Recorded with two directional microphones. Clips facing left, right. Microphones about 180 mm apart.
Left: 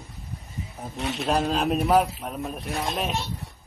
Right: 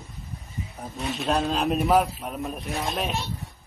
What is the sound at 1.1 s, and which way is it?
A man's voice, centre (ahead or behind).